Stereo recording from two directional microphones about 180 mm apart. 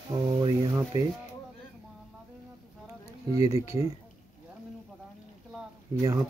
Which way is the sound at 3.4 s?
15° right (ahead or behind).